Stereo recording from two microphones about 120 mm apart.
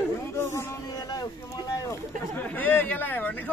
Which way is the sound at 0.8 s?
35° left (ahead or behind).